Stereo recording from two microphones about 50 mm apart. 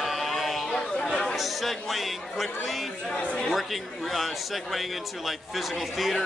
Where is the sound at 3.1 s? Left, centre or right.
Left.